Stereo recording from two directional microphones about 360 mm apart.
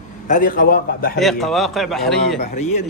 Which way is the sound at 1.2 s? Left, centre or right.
Centre.